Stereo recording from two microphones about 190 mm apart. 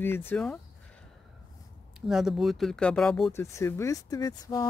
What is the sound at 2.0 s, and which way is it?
Speech, centre (ahead or behind).